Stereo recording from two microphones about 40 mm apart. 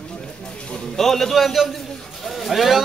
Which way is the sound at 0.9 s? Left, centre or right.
Centre.